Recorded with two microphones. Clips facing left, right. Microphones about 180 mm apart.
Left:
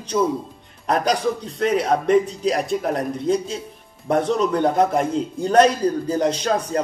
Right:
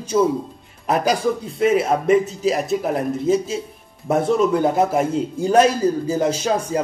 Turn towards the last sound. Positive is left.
turn(degrees=-5)  # may be behind; listen again after turning